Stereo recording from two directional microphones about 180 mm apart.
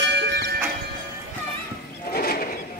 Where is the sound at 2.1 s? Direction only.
55° left (ahead or behind).